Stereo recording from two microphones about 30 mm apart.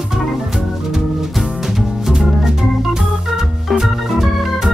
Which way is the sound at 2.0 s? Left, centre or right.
Centre.